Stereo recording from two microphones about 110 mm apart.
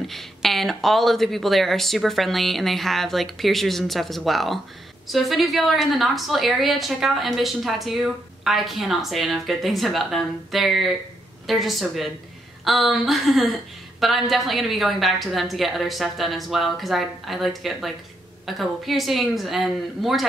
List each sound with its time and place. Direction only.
0.0 s a woman's voice: centre (ahead or behind)